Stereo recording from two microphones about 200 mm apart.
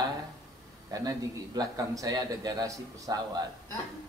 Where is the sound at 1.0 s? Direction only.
20° right (ahead or behind).